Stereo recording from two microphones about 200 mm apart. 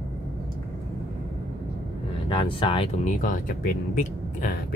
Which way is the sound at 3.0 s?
40° left (ahead or behind).